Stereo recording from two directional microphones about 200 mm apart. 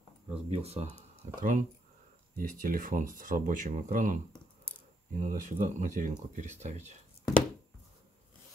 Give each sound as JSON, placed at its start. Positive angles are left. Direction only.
{"t": 0.3, "sound": "speech", "side_deg": -30}
{"t": 1.4, "sound": "speech", "side_deg": -40}